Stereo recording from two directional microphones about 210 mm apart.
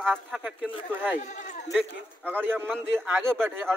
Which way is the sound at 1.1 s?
35° left (ahead or behind).